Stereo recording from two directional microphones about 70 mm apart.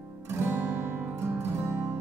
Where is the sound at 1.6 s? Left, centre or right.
Right.